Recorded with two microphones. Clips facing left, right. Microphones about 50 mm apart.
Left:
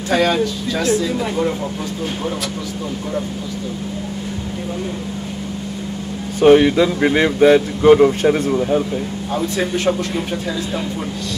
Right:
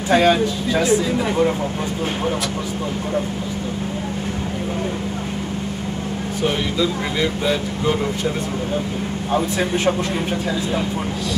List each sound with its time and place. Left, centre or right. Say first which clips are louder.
0.1 s speech: right 1 dB; centre
6.4 s speech: left 11 dB; left